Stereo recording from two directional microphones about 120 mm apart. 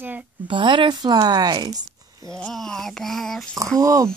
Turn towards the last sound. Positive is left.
turn(degrees=-30)  # may be behind; listen again after turning